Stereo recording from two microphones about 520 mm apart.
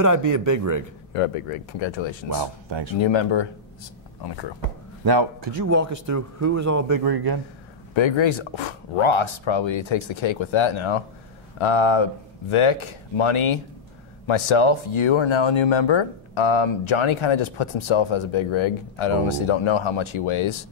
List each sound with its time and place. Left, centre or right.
0.0 s speech: right
1.1 s speech: left
2.4 s a man's voice: right
3.0 s speech: left
5.0 s a man's voice: right
5.7 s speech: right
7.9 s speech: left